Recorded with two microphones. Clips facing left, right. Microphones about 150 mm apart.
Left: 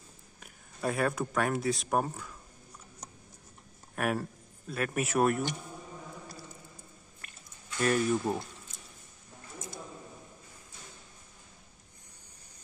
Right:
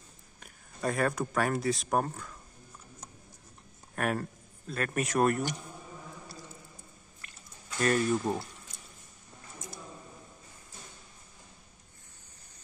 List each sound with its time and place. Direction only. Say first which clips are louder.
0.4 s speech: even; 5° left (ahead or behind)
3.9 s speech: even; 5° left (ahead or behind)
7.8 s speech: even; 5° left (ahead or behind)